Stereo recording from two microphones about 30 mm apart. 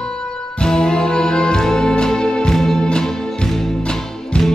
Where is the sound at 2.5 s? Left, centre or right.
Centre.